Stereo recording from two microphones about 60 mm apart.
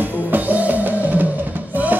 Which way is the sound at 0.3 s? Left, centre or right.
Right.